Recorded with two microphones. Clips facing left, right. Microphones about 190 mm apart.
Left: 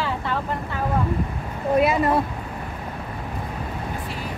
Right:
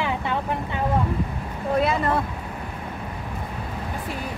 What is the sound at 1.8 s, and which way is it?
Speech, 10° left (ahead or behind).